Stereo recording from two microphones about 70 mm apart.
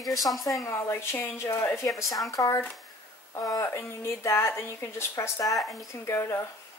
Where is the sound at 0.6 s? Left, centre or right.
Left.